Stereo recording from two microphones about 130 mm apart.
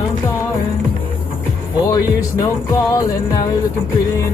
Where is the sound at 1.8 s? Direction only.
25° left (ahead or behind).